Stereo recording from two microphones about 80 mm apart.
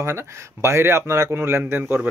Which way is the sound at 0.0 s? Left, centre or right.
Right.